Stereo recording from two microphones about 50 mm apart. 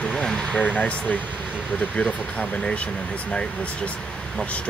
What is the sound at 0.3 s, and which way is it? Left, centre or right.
Vehicle, centre.